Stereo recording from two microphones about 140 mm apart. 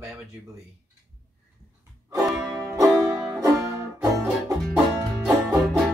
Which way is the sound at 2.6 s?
20° right (ahead or behind).